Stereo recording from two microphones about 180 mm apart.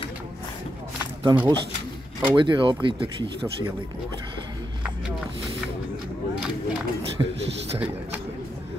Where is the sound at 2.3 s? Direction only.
25° right (ahead or behind).